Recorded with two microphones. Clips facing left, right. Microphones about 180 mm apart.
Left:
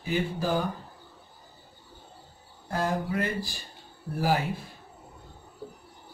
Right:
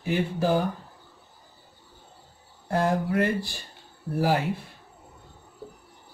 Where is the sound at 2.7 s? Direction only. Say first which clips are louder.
Right 4 dB; 65° right (ahead or behind).